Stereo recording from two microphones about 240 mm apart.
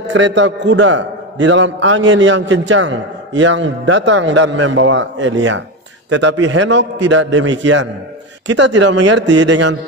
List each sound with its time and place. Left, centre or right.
0.1 s a man's voice: right